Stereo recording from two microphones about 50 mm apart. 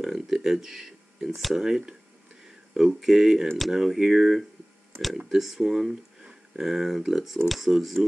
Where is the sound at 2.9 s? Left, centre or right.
Centre.